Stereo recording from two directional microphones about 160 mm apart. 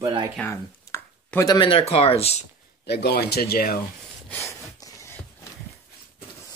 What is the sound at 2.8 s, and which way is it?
Speech, 85° left.